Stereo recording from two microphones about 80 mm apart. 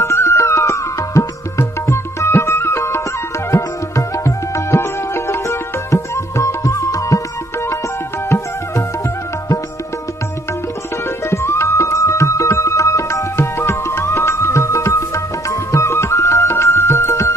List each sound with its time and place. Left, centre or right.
0.0 s music: left
11.2 s music: left